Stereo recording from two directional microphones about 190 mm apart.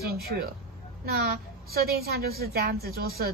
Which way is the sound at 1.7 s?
55° right (ahead or behind).